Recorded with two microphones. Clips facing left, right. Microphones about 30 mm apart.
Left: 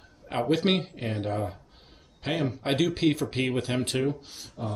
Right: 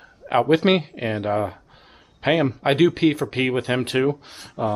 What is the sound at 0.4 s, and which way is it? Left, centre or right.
Speech, centre.